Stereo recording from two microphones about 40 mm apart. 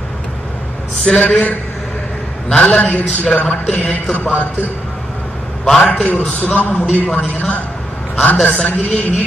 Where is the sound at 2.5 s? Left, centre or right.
Left.